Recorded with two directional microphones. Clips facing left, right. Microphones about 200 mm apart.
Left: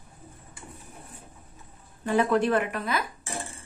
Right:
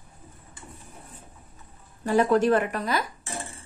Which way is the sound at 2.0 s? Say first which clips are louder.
Right 2 dB; 40° right (ahead or behind).